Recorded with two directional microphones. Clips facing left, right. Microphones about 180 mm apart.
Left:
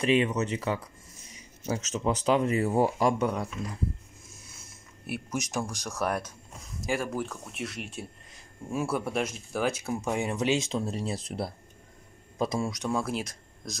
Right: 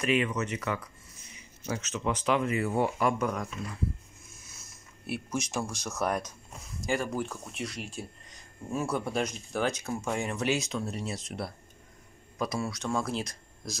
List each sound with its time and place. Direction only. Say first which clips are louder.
0.0 s speech: left 3 dB; 30° left (ahead or behind)
5.0 s speech: even; 5° left (ahead or behind)
12.9 s speech: left 1 dB; 5° left (ahead or behind)